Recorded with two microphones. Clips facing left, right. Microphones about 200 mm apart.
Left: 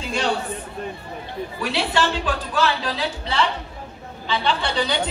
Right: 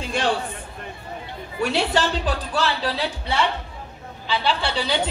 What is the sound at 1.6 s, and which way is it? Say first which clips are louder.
Speech: right 2 dB; 40° right (ahead or behind).